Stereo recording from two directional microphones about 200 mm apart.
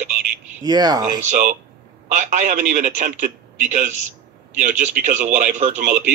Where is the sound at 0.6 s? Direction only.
20° right (ahead or behind).